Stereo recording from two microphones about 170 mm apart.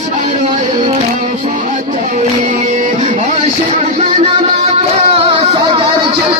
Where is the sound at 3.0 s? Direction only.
45° right (ahead or behind).